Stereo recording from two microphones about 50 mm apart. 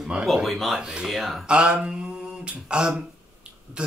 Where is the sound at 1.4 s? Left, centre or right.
Right.